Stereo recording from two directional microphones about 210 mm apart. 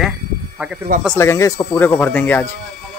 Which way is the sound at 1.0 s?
10° left (ahead or behind).